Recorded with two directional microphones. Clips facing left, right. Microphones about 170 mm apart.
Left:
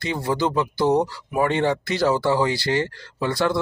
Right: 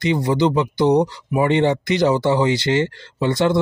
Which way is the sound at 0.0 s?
20° right (ahead or behind).